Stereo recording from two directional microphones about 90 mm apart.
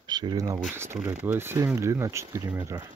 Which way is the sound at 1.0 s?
25° right (ahead or behind).